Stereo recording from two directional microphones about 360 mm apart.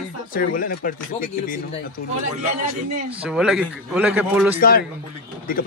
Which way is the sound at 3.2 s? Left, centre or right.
Centre.